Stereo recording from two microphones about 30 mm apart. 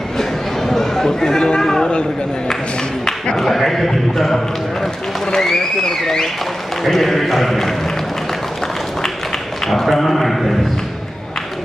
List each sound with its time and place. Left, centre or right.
0.2 s a sound: centre
1.6 s chatter: centre
1.9 s speech: left
3.3 s a man's voice: centre
5.4 s a man's voice: centre
9.7 s a man's voice: centre